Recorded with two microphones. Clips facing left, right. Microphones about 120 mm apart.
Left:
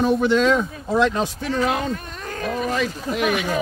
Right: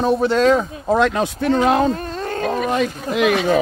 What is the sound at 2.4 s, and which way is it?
Speech, 85° right.